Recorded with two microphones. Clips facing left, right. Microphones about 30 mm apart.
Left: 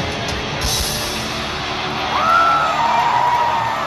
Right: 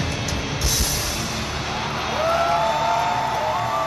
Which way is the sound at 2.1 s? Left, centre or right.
Left.